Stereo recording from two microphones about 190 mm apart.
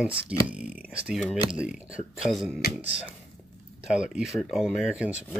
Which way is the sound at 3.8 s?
5° right (ahead or behind).